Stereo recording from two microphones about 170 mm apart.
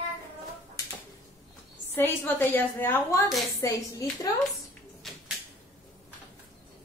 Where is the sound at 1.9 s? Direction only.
15° left (ahead or behind).